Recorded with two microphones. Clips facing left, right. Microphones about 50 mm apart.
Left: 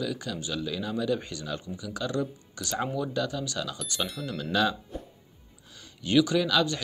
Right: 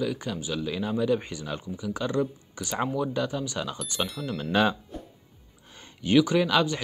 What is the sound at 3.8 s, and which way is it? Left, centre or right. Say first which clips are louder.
Speech: right 2 dB; centre.